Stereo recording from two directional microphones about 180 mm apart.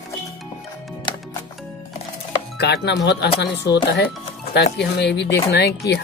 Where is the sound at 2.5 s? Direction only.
70° left (ahead or behind).